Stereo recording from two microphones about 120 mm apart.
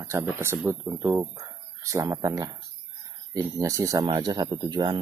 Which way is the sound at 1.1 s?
25° right (ahead or behind).